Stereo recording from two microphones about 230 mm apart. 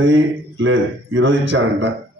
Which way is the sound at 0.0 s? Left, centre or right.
Right.